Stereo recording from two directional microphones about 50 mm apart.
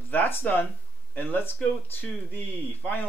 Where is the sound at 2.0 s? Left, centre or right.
Left.